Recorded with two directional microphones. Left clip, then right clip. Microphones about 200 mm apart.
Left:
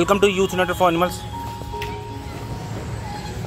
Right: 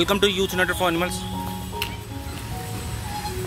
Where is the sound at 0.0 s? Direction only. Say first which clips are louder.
Left 3 dB; centre (ahead or behind).